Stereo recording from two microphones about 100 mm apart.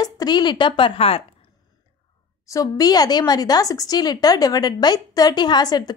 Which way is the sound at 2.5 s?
35° left (ahead or behind).